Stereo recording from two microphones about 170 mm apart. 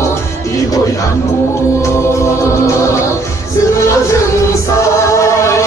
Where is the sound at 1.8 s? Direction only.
15° left (ahead or behind).